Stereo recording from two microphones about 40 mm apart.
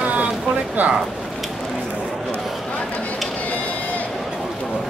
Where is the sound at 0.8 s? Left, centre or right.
Right.